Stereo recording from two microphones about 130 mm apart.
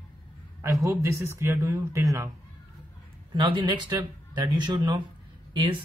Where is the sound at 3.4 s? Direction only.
40° right (ahead or behind).